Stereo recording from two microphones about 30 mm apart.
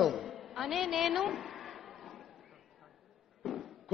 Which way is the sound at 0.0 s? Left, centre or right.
Centre.